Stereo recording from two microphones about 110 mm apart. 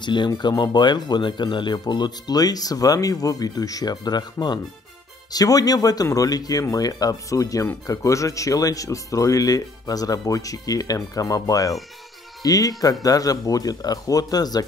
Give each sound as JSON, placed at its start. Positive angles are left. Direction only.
{"t": 0.0, "sound": "speech", "side_deg": 45}